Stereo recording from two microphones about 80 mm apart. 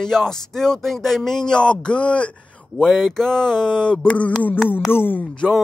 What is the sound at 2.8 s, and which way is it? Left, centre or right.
Speech, centre.